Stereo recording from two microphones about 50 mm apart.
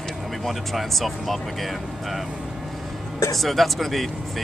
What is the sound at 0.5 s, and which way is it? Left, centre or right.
Speech, centre.